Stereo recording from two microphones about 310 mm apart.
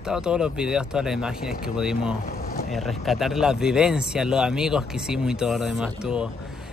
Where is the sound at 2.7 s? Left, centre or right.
Centre.